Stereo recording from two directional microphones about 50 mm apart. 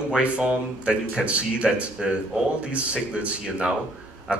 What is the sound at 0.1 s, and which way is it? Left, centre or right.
A man's voice, right.